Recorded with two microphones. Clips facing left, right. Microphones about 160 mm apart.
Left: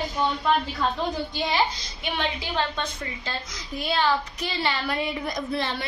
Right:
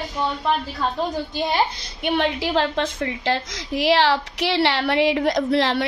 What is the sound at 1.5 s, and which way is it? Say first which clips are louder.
A woman's voice: right 1 dB; 60° right (ahead or behind).